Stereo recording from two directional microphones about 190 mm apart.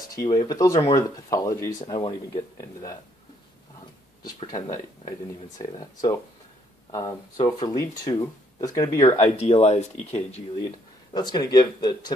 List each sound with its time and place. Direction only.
0.2 s speech: 20° left (ahead or behind)
4.2 s speech: 20° left (ahead or behind)
6.9 s speech: 20° left (ahead or behind)
8.9 s speech: 35° left (ahead or behind)
11.1 s speech: 20° left (ahead or behind)